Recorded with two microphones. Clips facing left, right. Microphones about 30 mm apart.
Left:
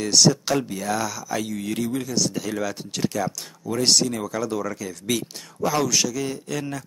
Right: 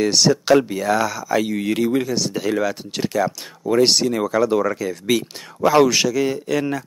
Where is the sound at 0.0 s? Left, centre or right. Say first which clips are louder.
Right 3 dB; centre.